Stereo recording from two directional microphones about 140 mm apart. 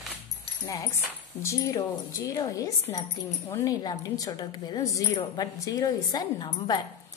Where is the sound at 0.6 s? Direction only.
20° left (ahead or behind).